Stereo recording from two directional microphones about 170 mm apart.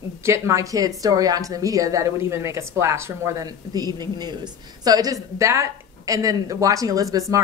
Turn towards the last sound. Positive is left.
turn(degrees=-20)  # may be behind; listen again after turning